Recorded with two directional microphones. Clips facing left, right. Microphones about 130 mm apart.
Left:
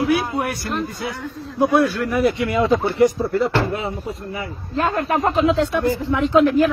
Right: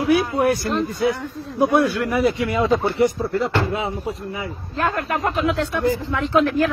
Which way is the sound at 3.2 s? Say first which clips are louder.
Left 2 dB; 5° left (ahead or behind).